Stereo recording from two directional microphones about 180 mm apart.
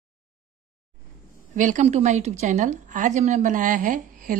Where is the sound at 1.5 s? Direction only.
45° right (ahead or behind).